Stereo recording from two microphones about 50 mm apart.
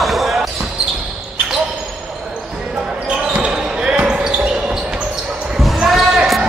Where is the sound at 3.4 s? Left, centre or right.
Centre.